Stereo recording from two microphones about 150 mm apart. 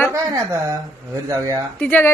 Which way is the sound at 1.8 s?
10° left (ahead or behind).